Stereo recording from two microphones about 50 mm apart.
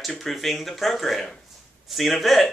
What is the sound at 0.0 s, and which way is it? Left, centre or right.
Speech, centre.